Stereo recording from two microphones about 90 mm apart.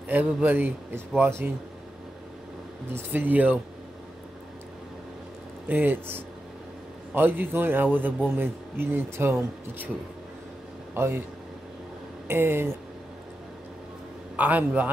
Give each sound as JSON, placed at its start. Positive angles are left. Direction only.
{"t": 0.4, "sound": "speech", "side_deg": -20}
{"t": 2.9, "sound": "speech", "side_deg": -20}
{"t": 5.7, "sound": "speech", "side_deg": -20}
{"t": 11.0, "sound": "speech", "side_deg": -25}
{"t": 12.3, "sound": "speech", "side_deg": -25}
{"t": 14.3, "sound": "a man's voice", "side_deg": -20}